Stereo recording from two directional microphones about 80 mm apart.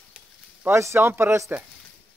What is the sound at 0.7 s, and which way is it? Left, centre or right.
Speech, right.